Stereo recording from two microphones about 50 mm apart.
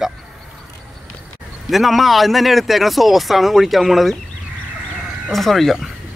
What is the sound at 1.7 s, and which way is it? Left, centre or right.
Speech, centre.